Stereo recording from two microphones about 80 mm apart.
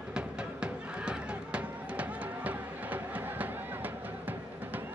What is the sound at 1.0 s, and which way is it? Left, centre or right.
Music, centre.